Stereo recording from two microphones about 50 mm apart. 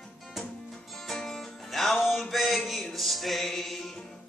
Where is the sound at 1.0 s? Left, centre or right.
Centre.